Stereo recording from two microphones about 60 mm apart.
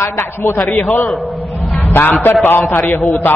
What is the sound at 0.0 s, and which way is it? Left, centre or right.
Speech, left.